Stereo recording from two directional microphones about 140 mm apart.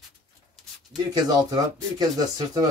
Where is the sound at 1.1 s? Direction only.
30° right (ahead or behind).